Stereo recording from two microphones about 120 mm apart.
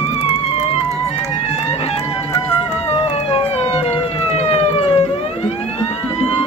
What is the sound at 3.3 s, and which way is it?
Police car, 55° left (ahead or behind).